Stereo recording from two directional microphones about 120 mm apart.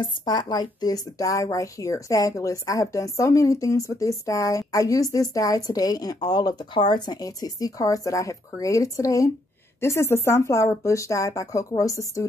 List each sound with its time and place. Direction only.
0.0 s speech: 40° left (ahead or behind)